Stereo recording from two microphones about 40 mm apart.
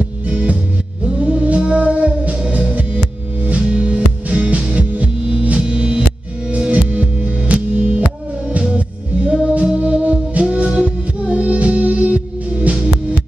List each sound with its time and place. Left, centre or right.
1.0 s music: right
2.7 s music: right
3.6 s music: right
9.8 s organ: right
10.5 s music: right